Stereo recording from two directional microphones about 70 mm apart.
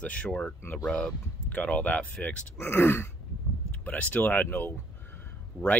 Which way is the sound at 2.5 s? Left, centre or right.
Left.